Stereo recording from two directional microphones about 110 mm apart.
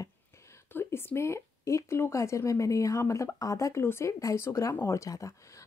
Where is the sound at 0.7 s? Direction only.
20° left (ahead or behind).